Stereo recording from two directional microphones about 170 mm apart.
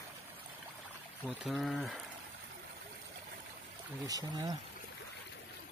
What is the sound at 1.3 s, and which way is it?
Speech, centre (ahead or behind).